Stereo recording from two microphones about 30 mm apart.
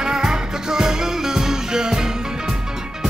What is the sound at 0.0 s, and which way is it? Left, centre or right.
Music, right.